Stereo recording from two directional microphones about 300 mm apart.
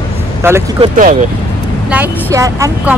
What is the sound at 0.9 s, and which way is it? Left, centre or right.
Speech, right.